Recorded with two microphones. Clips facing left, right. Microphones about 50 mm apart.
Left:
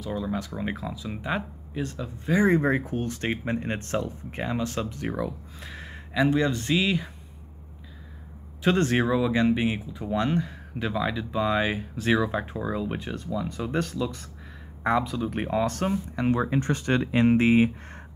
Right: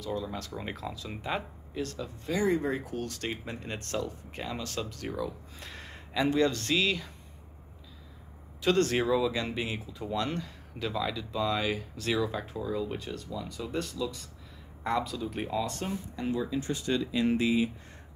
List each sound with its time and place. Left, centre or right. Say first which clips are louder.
0.0 s speech: left 4 dB; centre
2.3 s speech: left 6 dB; left
5.6 s speech: left 4 dB; centre; by 7.1 s left
8.6 s speech: left 3 dB; left
14.8 s speech: left 6 dB; left
15.2 s speech: left 6 dB; left